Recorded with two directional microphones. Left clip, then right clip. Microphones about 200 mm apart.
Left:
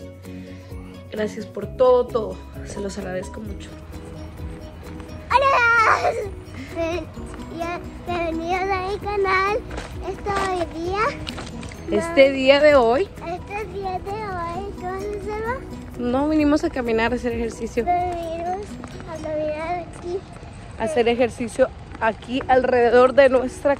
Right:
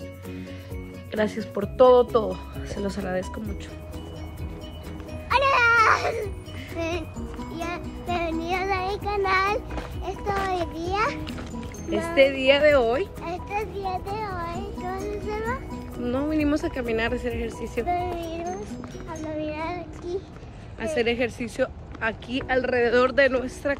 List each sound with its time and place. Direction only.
1.1 s a child's voice: 10° right (ahead or behind)
5.3 s music: 10° right (ahead or behind)
6.8 s a child's voice: 15° right (ahead or behind)
12.2 s speech: 15° left (ahead or behind)
13.2 s a child's voice: 15° right (ahead or behind)
16.0 s speech: 10° left (ahead or behind)
17.8 s a child's voice: 15° right (ahead or behind)
19.2 s child singing: 15° right (ahead or behind)
20.8 s speech: centre (ahead or behind)